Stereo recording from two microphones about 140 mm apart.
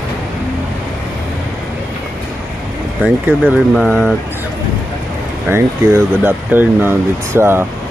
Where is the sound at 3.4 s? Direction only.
5° left (ahead or behind).